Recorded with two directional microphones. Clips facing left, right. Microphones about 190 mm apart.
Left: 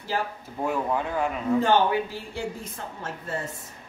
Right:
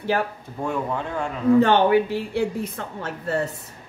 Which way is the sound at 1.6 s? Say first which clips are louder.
Right 3 dB; 65° right (ahead or behind).